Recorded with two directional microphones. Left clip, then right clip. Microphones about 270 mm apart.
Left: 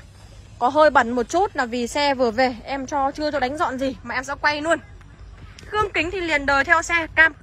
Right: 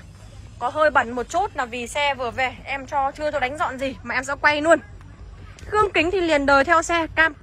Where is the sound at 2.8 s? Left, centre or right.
Left.